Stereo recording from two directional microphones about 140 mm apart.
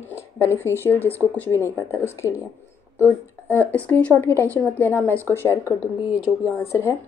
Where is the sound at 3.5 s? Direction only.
15° left (ahead or behind).